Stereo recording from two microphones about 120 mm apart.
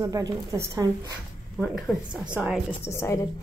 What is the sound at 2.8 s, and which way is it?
Speech, 20° left (ahead or behind).